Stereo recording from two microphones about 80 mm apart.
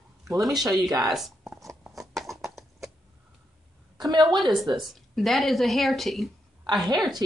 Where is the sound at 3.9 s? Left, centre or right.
Right.